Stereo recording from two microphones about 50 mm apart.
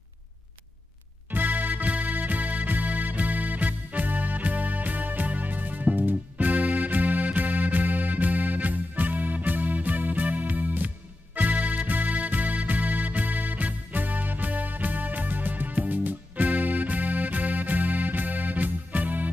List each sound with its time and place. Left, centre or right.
1.3 s music: right